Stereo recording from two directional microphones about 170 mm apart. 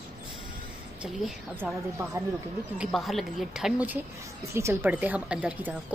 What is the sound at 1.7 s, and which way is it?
Speech, 15° right (ahead or behind).